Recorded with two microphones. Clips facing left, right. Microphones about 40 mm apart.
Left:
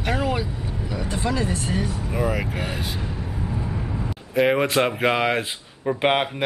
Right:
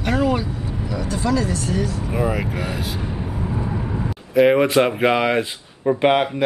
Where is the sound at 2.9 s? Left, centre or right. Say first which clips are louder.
Right 3 dB; centre.